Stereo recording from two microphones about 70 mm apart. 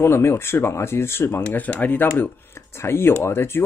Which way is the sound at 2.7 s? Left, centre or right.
Left.